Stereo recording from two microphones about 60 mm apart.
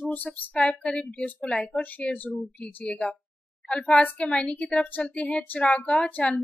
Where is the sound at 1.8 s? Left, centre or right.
Left.